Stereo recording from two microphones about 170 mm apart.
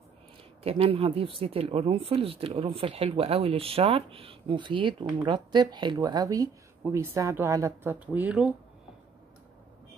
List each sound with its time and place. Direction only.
0.7 s speech: 35° right (ahead or behind); by 8.5 s 10° right (ahead or behind)